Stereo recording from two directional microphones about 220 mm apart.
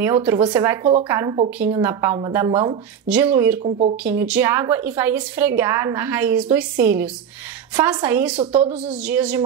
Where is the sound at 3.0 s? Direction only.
5° right (ahead or behind).